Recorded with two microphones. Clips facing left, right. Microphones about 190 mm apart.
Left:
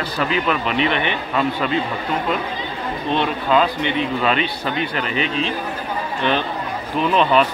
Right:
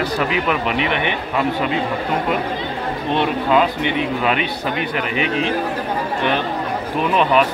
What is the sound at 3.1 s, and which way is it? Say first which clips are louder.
Speech: right 1 dB; 15° right (ahead or behind).